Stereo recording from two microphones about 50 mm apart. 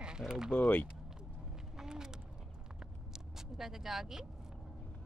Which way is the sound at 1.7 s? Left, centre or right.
Centre.